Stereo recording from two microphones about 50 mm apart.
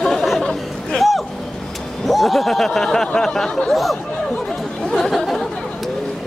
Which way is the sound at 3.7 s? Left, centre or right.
Centre.